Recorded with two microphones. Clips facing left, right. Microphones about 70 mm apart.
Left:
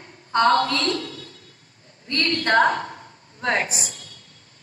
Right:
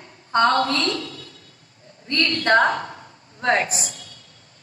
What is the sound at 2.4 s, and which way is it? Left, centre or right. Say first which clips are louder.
A woman's voice: right 1 dB; right.